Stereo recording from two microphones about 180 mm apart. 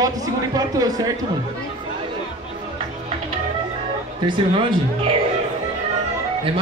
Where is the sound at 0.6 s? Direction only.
20° right (ahead or behind).